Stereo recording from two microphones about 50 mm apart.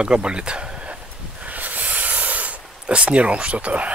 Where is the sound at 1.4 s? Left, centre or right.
Right.